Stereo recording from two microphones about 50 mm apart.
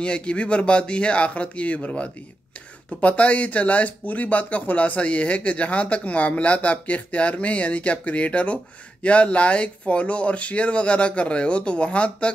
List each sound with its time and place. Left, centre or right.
0.0 s speech: left